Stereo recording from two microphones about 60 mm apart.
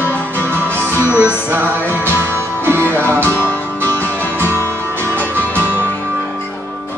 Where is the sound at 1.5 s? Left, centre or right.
Right.